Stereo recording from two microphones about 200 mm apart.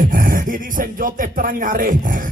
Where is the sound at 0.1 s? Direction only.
45° right (ahead or behind).